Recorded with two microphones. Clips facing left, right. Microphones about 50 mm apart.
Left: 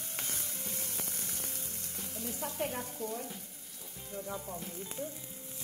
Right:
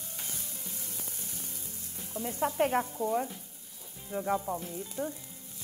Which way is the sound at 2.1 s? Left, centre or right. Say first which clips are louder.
Right 9 dB; right.